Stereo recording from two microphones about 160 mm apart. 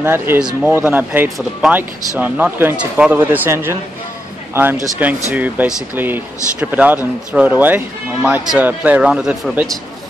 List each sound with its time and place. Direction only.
0.0 s speech: 15° right (ahead or behind)
5.3 s speech: 10° right (ahead or behind)